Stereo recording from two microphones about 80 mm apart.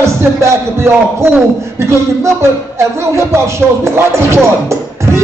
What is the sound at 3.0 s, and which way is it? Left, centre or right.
Music, right.